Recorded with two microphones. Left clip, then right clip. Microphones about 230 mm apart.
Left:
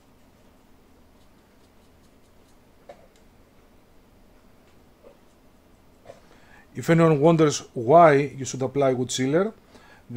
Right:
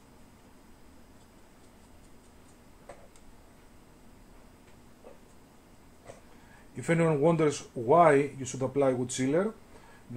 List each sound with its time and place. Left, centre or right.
6.7 s speech: left